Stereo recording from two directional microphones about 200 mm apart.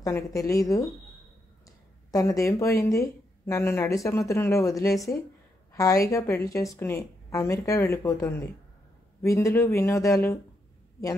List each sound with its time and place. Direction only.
0.0 s speech: 15° left (ahead or behind)
2.0 s speech: 15° left (ahead or behind)